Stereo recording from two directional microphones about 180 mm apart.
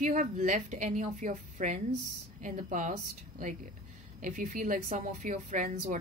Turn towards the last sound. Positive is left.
turn(degrees=-45)  # may be behind; listen again after turning